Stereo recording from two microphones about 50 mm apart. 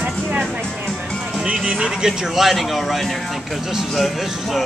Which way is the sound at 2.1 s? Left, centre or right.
Centre.